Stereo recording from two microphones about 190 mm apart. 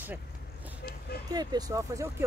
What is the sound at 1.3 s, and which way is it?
Speech, 20° right (ahead or behind).